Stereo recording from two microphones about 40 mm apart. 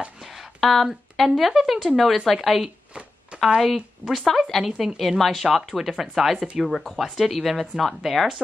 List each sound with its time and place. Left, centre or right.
0.2 s speech: centre
2.9 s shuffling cards: right
3.4 s speech: centre